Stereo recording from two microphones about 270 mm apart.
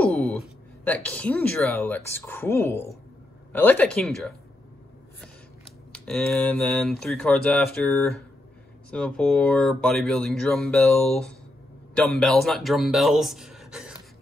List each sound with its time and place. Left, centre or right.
0.0 s a sound: centre
0.8 s speech: centre
5.9 s speech: centre